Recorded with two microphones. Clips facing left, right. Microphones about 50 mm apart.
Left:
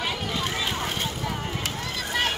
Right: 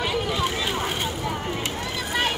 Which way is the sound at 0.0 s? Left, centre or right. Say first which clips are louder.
Right 4 dB; centre.